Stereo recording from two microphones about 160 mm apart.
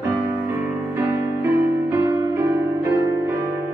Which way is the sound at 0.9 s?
20° right (ahead or behind).